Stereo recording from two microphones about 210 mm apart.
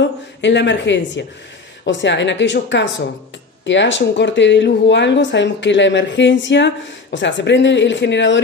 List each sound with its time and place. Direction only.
0.4 s speech: 55° left (ahead or behind)